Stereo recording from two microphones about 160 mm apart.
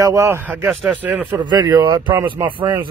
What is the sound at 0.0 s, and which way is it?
Speech, 20° right (ahead or behind).